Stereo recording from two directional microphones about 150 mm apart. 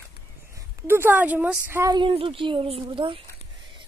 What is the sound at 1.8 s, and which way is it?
A woman's voice, 30° right (ahead or behind).